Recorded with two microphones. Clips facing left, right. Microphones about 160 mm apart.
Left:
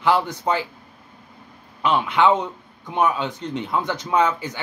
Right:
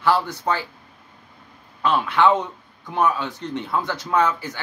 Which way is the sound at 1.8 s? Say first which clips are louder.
Even; 15° left (ahead or behind).